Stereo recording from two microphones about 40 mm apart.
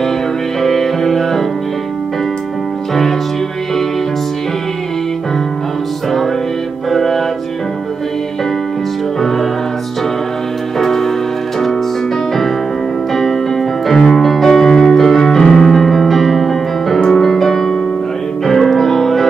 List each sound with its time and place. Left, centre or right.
0.6 s music: centre
6.9 s music: centre
10.8 s music: centre
13.1 s music: centre